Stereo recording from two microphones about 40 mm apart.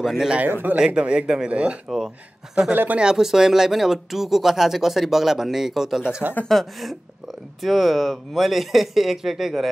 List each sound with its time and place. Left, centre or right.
0.5 s speech: right
0.7 s speech: right
1.5 s speech: right
1.9 s speech: centre
2.7 s speech: right
3.0 s speech: centre
6.5 s speech: centre